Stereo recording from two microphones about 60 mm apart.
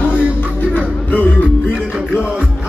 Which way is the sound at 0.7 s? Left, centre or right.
Left.